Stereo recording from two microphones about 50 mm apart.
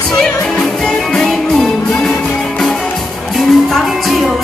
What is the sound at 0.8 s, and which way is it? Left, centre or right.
Music, centre.